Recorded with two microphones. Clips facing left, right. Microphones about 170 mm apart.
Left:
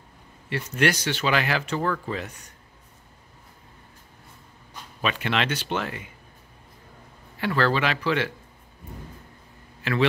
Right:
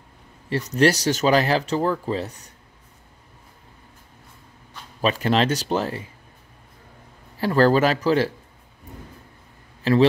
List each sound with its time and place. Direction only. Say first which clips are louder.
0.5 s speech: right 5 dB; 35° right (ahead or behind)
5.0 s speech: right 6 dB; 35° right (ahead or behind)
7.3 s speech: right 6 dB; 40° right (ahead or behind)
9.8 s speech: right 8 dB; 35° right (ahead or behind)